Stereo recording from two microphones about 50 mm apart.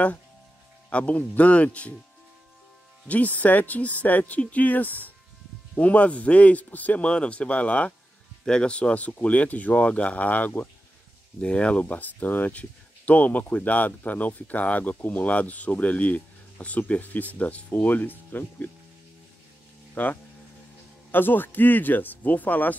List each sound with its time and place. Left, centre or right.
0.8 s speech: left
3.1 s speech: left
11.8 s speech: left
19.9 s speech: left